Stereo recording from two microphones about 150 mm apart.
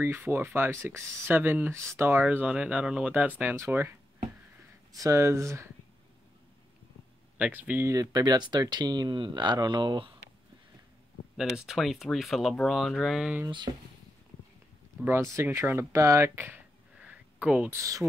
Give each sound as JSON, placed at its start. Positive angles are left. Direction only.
{"t": 0.0, "sound": "speech", "side_deg": -15}
{"t": 4.9, "sound": "speech", "side_deg": -20}
{"t": 7.3, "sound": "speech", "side_deg": -10}
{"t": 7.9, "sound": "speech", "side_deg": -25}
{"t": 11.3, "sound": "speech", "side_deg": -5}
{"t": 13.5, "sound": "speech", "side_deg": -30}
{"t": 15.0, "sound": "speech", "side_deg": -20}
{"t": 17.7, "sound": "speech", "side_deg": -20}